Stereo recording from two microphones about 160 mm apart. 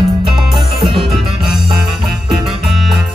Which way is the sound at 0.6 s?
30° right (ahead or behind).